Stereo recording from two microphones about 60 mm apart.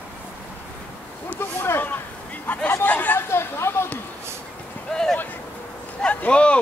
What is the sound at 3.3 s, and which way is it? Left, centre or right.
Speech, left.